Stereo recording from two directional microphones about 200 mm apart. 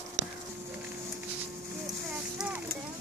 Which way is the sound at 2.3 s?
5° right (ahead or behind).